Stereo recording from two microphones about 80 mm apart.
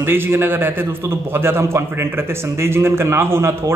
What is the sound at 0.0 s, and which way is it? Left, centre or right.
A man's voice, right.